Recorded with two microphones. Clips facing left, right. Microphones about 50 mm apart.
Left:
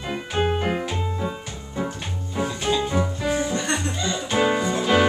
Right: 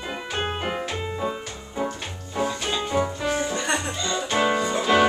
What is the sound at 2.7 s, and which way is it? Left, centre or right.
Music, centre.